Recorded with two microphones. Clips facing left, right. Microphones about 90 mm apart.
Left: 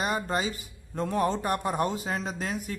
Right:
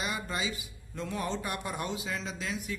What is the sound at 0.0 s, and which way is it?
A man's voice, 45° left (ahead or behind).